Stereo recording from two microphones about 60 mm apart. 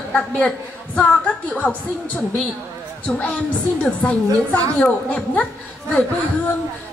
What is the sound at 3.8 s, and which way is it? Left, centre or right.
A woman's voice, left.